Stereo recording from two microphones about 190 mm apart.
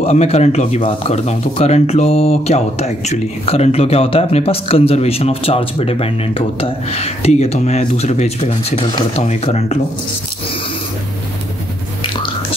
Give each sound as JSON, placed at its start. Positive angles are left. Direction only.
{"t": 0.0, "sound": "speech", "side_deg": 35}